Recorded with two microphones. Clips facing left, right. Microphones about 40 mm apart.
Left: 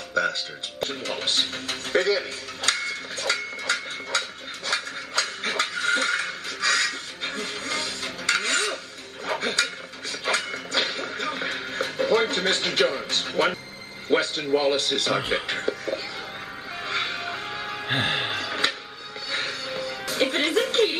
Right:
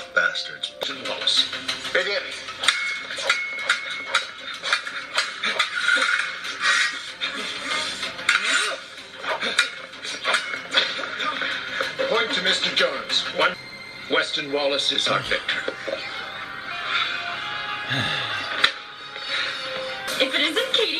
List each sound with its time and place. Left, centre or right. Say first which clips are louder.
0.1 s speech: right 3 dB; right
4.1 s a sound: right 3 dB; right
9.2 s music: right 2 dB; right
14.0 s speech: even; right
15.1 s speech: right 1 dB; centre
15.5 s a sound: even; right
16.8 s music: right 3 dB; right
17.8 s music: left 2 dB; centre
18.3 s music: right 1 dB; centre
19.3 s music: right 2 dB; right